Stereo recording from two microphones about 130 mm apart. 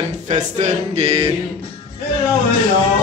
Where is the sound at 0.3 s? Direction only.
65° right (ahead or behind).